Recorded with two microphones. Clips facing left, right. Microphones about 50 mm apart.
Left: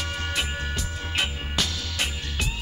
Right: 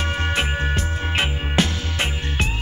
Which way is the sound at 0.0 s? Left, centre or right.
Right.